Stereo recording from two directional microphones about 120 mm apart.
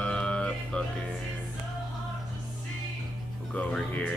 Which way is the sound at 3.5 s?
10° left (ahead or behind).